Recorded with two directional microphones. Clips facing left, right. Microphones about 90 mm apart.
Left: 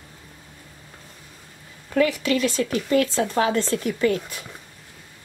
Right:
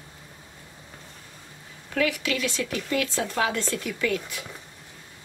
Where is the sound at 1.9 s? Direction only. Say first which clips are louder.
Left 5 dB; 40° left (ahead or behind).